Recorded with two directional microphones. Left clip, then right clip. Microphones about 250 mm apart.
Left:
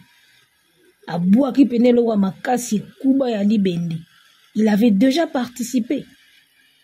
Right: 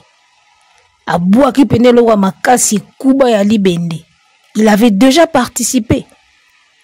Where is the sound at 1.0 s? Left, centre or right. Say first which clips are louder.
Right 9 dB; right.